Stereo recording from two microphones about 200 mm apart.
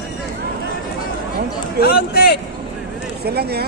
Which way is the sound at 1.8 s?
50° left (ahead or behind).